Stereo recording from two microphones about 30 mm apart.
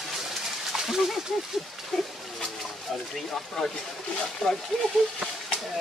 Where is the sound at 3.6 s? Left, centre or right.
Centre.